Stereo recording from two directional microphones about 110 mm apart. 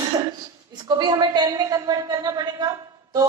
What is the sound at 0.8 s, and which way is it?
A woman's voice, 45° right (ahead or behind).